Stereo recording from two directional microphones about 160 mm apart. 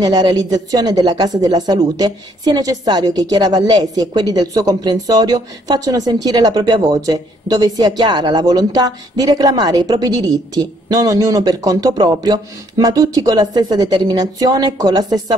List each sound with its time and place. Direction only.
0.0 s speech: 25° right (ahead or behind)